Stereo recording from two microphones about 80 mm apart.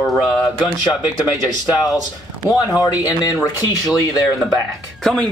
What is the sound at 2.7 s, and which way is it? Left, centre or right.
Speech, left.